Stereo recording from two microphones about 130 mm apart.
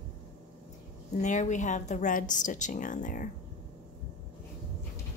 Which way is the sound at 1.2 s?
70° left (ahead or behind).